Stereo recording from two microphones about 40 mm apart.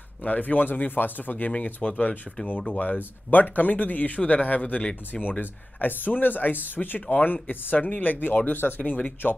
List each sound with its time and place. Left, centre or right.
0.2 s speech: left
1.5 s speech: left
2.7 s speech: left
5.2 s speech: left
9.2 s speech: left